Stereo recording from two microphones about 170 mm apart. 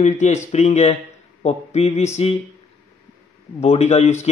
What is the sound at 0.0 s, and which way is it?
Speech, 45° left (ahead or behind).